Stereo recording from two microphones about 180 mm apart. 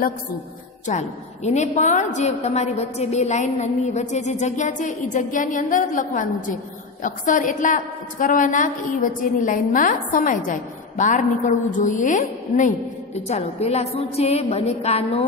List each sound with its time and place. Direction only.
0.8 s a woman's voice: 40° left (ahead or behind)